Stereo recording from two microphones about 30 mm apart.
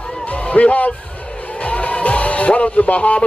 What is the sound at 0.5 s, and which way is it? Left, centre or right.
Speech, left.